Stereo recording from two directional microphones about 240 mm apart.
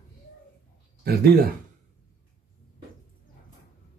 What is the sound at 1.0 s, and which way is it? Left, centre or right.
Speech, right.